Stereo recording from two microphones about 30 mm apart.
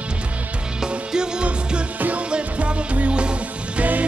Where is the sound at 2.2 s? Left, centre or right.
Right.